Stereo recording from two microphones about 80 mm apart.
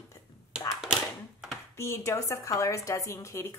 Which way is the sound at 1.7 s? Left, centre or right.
Left.